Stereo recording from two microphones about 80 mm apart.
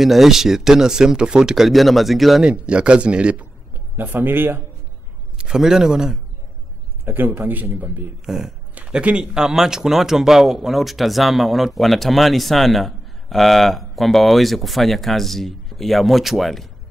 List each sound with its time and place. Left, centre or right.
0.0 s speech: centre
2.4 s speech: centre
3.9 s a man's voice: right
5.4 s speech: centre
7.1 s a man's voice: right
8.3 s speech: centre
8.7 s speech: centre